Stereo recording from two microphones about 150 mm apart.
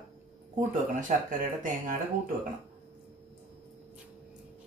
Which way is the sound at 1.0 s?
60° right (ahead or behind).